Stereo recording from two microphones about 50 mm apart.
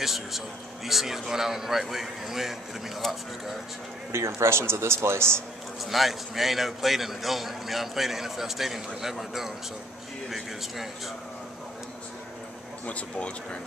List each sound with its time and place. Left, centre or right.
0.0 s a man's voice: centre
4.1 s a man's voice: right
5.9 s a man's voice: centre
12.8 s speech: left